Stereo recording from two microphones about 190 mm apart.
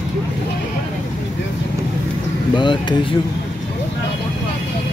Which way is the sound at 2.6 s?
25° left (ahead or behind).